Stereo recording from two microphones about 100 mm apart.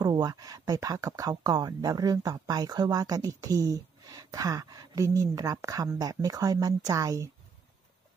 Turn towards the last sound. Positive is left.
turn(degrees=-30)  # may be behind; listen again after turning